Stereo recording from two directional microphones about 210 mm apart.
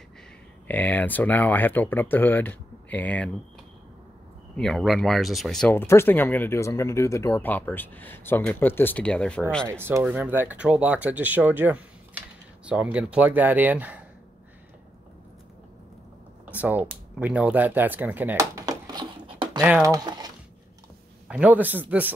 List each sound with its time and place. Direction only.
0.7 s speech: 10° left (ahead or behind)
4.6 s speech: centre (ahead or behind)
9.7 s speech: 10° right (ahead or behind)
16.4 s a sound: 5° right (ahead or behind); by 19.6 s 25° right (ahead or behind)
19.6 s speech: 10° right (ahead or behind)
21.3 s speech: 5° right (ahead or behind)